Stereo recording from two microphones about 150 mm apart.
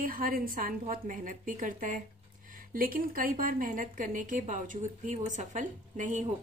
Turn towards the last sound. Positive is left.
turn(degrees=-55)  # may be behind; listen again after turning